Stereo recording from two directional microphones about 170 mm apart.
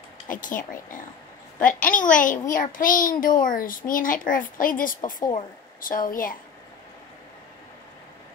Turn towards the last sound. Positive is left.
turn(degrees=55)  # may be behind; listen again after turning